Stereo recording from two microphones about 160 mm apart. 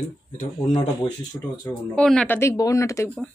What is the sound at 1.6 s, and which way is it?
A woman's voice, 5° left (ahead or behind).